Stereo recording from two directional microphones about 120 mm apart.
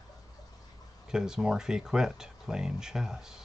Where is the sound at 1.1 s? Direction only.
5° right (ahead or behind).